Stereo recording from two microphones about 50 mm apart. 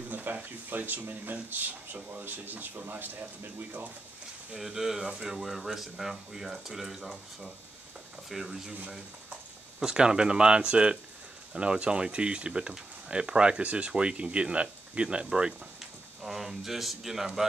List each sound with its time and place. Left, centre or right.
0.1 s speech: right
4.6 s speech: centre
5.4 s speech: centre
9.8 s speech: centre
16.2 s speech: centre